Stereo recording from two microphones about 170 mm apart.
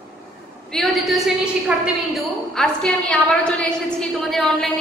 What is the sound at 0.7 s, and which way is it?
A woman's voice, centre (ahead or behind).